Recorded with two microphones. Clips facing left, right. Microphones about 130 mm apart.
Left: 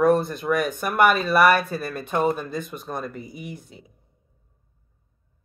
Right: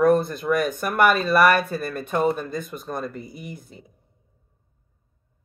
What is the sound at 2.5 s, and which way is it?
Speech, 50° right (ahead or behind).